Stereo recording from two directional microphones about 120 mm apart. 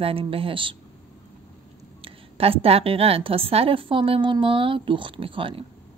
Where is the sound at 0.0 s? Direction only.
50° right (ahead or behind).